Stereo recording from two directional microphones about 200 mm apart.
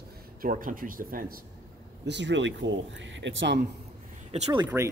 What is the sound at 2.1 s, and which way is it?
Speech, 65° right (ahead or behind).